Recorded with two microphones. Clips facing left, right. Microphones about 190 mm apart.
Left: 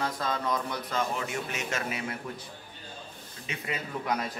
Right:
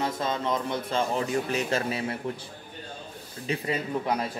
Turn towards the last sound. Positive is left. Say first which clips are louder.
# right 5 dB
turn(degrees=-30)  # may be behind; listen again after turning